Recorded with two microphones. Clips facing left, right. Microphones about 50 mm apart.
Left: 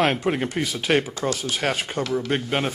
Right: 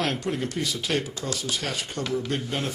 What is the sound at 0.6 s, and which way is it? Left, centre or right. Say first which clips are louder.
Speech: left 5 dB; left.